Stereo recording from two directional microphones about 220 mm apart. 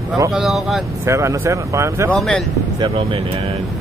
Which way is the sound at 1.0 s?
15° right (ahead or behind).